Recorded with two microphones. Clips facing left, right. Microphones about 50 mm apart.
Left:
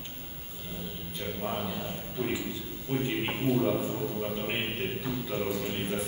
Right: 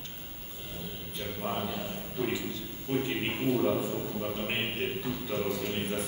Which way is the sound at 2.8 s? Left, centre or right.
Centre.